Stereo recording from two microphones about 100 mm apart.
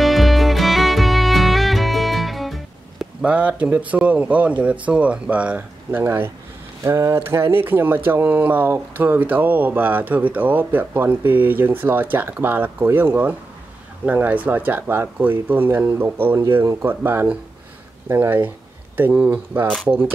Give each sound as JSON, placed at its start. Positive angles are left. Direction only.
{"t": 0.0, "sound": "music", "side_deg": 0}
{"t": 3.2, "sound": "speech", "side_deg": -15}